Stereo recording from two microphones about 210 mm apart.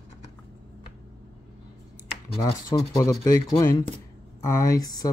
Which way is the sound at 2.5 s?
15° left (ahead or behind).